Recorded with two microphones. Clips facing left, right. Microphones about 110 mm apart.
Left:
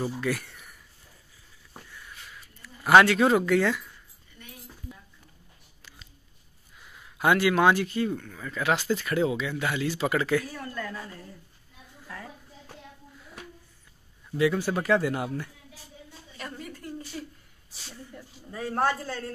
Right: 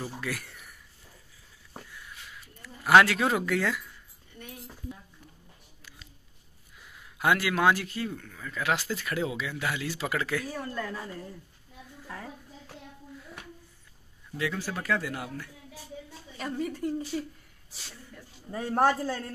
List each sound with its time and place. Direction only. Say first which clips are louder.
0.2 s speech: left 6 dB; centre (ahead or behind)
1.9 s a sound: even; 5° right (ahead or behind)
7.2 s speech: left 4 dB; centre (ahead or behind)
10.5 s a woman's voice: right 1 dB; 20° right (ahead or behind)
14.3 s speech: left 8 dB; 15° left (ahead or behind)
16.3 s a sound: right 7 dB; 10° right (ahead or behind)
17.1 s a man's voice: right 5 dB; 10° right (ahead or behind)
18.7 s a man's voice: right 2 dB; 15° right (ahead or behind)